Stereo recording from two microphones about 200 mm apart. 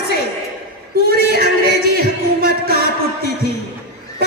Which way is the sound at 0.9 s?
50° right (ahead or behind).